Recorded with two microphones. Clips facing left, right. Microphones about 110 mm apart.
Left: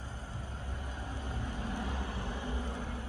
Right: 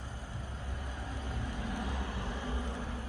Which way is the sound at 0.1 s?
20° left (ahead or behind).